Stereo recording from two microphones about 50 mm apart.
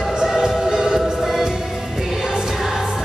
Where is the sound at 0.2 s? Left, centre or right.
Centre.